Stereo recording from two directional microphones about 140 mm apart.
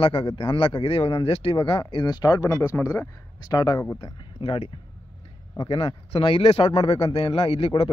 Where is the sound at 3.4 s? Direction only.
30° left (ahead or behind).